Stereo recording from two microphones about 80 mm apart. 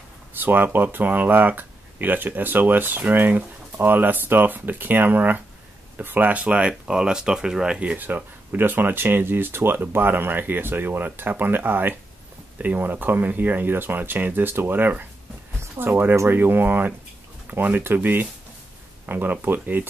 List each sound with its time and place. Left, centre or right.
0.3 s speech: right